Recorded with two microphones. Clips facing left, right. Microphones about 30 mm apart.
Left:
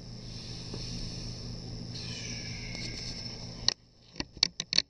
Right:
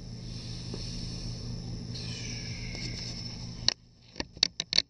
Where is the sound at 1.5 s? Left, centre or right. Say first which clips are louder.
Right 2 dB; centre.